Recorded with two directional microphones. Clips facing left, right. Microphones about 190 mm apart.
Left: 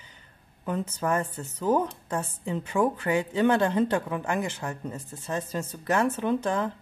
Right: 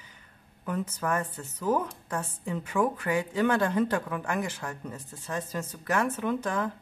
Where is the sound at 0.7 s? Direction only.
25° left (ahead or behind).